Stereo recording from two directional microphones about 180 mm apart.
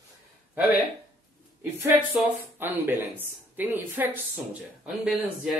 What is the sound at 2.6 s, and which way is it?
Speech, 10° right (ahead or behind).